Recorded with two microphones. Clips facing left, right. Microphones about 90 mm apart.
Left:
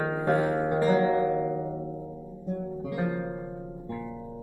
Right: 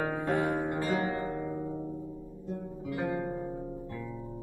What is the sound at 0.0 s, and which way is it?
Music, 20° left (ahead or behind).